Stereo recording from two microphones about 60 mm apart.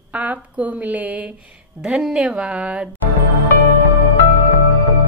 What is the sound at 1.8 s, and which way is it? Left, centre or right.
A woman's voice, centre.